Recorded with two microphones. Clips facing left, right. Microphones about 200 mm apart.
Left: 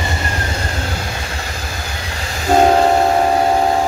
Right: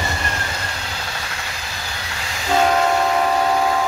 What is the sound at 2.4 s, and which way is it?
Train, 40° left (ahead or behind).